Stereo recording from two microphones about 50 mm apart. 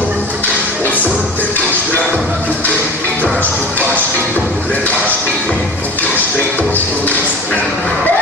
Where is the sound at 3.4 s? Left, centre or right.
Left.